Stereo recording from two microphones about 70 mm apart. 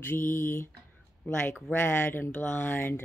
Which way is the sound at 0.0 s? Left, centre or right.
Left.